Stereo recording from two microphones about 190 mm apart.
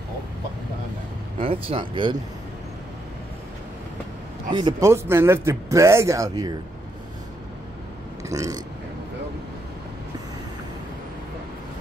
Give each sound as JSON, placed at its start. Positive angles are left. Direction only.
{"t": 1.4, "sound": "speech", "side_deg": -30}
{"t": 4.5, "sound": "speech", "side_deg": -25}
{"t": 8.3, "sound": "speech", "side_deg": -20}